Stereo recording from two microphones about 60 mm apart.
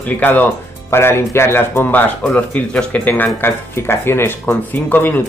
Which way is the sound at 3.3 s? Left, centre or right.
Left.